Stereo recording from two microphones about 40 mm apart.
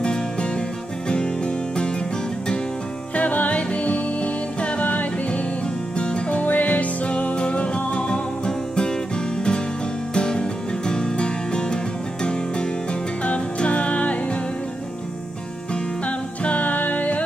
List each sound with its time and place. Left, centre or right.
0.0 s music: left
3.2 s music: left
5.9 s music: left
15.7 s music: left